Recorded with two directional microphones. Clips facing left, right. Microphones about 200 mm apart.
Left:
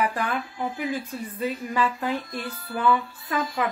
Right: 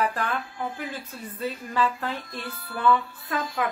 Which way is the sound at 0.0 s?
10° left (ahead or behind).